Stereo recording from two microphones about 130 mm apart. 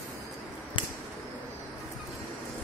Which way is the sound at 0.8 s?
40° left (ahead or behind).